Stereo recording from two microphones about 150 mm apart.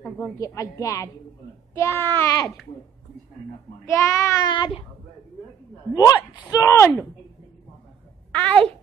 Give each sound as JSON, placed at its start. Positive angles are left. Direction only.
{"t": 0.4, "sound": "speech", "side_deg": 20}
{"t": 3.8, "sound": "speech", "side_deg": 20}
{"t": 4.5, "sound": "speech", "side_deg": 30}
{"t": 5.9, "sound": "speech", "side_deg": 25}
{"t": 8.3, "sound": "a child's voice", "side_deg": 10}